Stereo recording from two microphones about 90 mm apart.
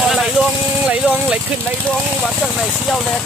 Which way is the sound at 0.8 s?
10° right (ahead or behind).